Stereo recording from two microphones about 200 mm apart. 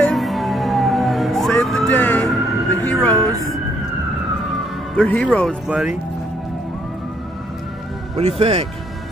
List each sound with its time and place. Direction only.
0.0 s music: centre (ahead or behind)
4.9 s speech: 5° left (ahead or behind)
5.7 s speech: 5° right (ahead or behind)
8.2 s speech: 30° right (ahead or behind)